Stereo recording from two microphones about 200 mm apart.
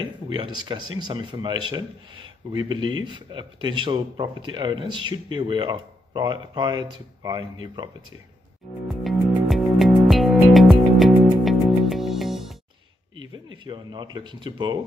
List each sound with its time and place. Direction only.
0.0 s speech: 25° right (ahead or behind)
9.0 s music: centre (ahead or behind)
13.3 s speech: 25° right (ahead or behind)